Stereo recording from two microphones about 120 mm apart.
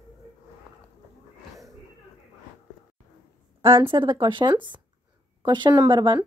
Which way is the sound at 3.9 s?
40° right (ahead or behind).